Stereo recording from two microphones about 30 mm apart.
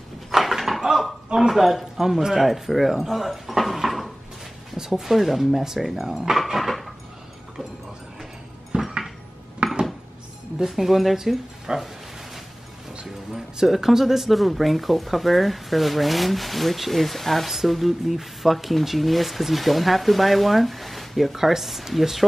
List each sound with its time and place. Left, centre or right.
0.4 s dog: centre
1.5 s speech: centre
4.7 s speech: centre
5.0 s speech: centre
6.3 s dog: centre
8.7 s dishes: centre
9.6 s dishes: right
10.7 s speech: centre
13.0 s music: centre
13.8 s speech: centre